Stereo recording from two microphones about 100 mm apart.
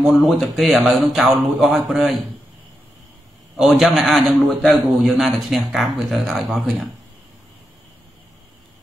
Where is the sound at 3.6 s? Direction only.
Centre (ahead or behind).